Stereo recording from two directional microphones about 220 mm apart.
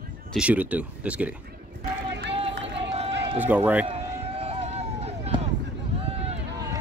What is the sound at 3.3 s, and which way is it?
Speech, 10° right (ahead or behind).